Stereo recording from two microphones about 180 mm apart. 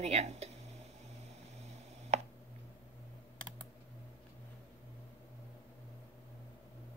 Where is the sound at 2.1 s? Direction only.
40° right (ahead or behind).